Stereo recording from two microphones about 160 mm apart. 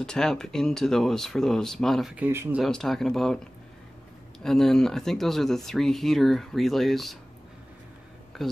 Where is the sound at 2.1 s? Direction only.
15° right (ahead or behind).